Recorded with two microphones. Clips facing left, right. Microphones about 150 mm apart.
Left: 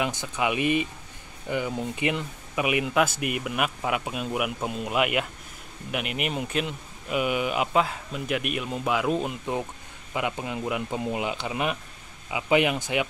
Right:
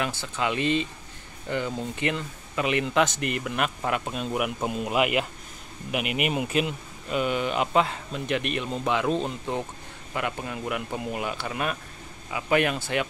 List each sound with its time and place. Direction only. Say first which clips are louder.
0.0 s speech: left 1 dB; 15° left (ahead or behind); by 6.7 s 5° right (ahead or behind)
7.1 s speech: even; 10° left (ahead or behind)